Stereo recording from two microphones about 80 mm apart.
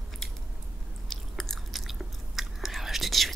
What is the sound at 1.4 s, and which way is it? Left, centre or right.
Chewing, centre.